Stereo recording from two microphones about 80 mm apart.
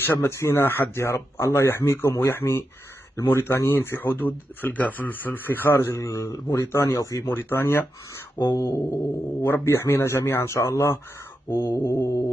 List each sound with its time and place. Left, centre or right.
0.0 s speech: left
8.4 s a sound: left
9.5 s speech: left